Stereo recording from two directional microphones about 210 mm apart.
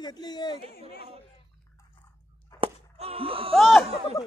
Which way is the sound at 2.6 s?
25° right (ahead or behind).